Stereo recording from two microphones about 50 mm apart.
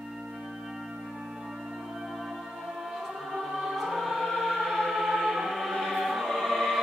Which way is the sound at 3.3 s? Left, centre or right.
Centre.